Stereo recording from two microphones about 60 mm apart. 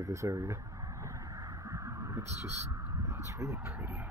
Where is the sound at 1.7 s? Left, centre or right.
Right.